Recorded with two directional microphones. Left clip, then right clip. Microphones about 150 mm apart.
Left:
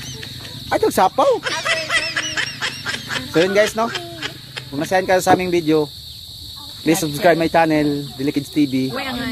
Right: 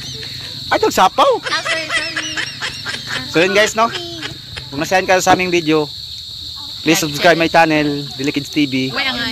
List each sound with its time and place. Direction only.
0.7 s honk: 5° right (ahead or behind)
3.4 s a man's voice: 10° right (ahead or behind)
8.9 s speech: 85° left